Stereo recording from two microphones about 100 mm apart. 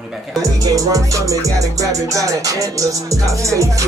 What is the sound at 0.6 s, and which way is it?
Music, 35° right (ahead or behind).